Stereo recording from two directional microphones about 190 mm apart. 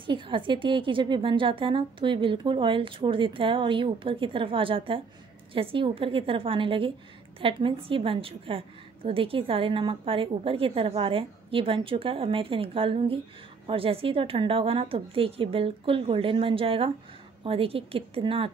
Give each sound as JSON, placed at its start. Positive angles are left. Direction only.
{"t": 0.0, "sound": "a woman's voice", "side_deg": -25}